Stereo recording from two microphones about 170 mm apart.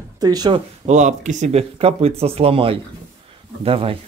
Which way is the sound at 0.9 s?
45° right (ahead or behind).